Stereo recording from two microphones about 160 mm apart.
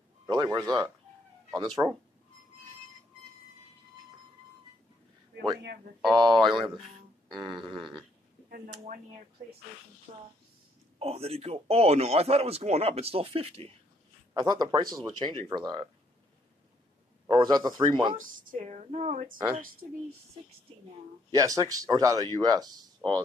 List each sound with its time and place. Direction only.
0.3 s speech: 25° right (ahead or behind)
6.3 s speech: centre (ahead or behind)
11.0 s a man's voice: 40° right (ahead or behind)
14.3 s speech: 25° right (ahead or behind)
17.3 s speech: 25° right (ahead or behind)
18.1 s a woman's voice: 60° right (ahead or behind)
19.3 s speech: 30° right (ahead or behind)
21.3 s speech: 20° right (ahead or behind)